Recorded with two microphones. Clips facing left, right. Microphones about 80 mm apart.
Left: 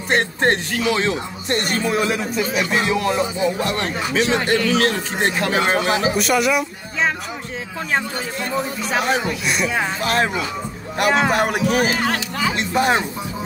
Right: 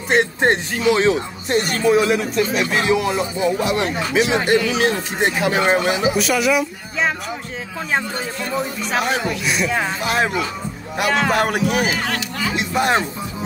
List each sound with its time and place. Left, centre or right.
0.1 s speech: centre
0.5 s speech: centre
1.5 s speech: centre
8.9 s speech: centre
11.0 s speech: centre